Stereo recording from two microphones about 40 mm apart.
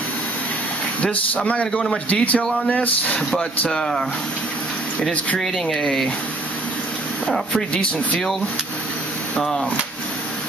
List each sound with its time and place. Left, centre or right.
1.1 s speech: left
3.2 s speech: left
5.4 s speech: centre
7.5 s speech: left